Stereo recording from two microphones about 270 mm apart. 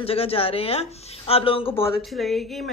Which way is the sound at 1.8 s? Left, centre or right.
Centre.